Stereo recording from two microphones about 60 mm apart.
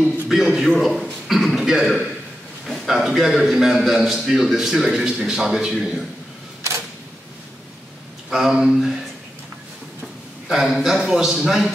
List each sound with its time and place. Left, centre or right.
0.0 s a man's voice: centre
1.2 s a sound: centre
2.6 s a man's voice: centre
8.3 s a man's voice: centre
10.5 s a man's voice: centre